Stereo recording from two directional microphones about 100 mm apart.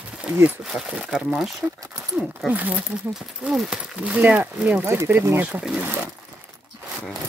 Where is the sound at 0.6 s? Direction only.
5° right (ahead or behind).